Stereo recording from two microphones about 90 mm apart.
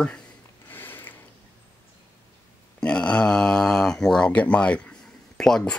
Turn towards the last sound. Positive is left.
turn(degrees=5)  # may be behind; listen again after turning